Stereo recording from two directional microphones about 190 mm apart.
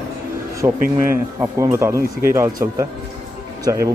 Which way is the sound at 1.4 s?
15° right (ahead or behind).